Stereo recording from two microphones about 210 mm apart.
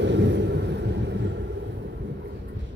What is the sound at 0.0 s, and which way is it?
Vehicle, 60° right (ahead or behind).